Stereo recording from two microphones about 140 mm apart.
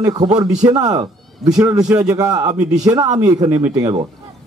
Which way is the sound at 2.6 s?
55° right (ahead or behind).